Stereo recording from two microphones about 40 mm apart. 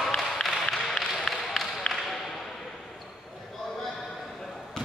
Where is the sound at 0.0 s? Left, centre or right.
Centre.